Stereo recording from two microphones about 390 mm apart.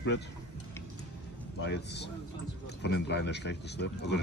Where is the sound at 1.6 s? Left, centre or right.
Left.